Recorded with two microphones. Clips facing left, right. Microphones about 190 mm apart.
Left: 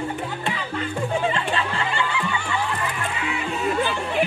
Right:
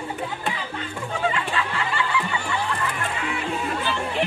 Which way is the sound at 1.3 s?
30° left (ahead or behind).